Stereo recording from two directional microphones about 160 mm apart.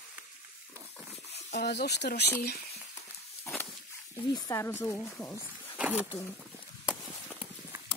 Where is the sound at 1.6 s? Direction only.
90° left.